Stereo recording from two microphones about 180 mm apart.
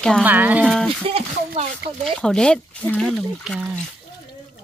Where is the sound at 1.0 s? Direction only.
30° right (ahead or behind).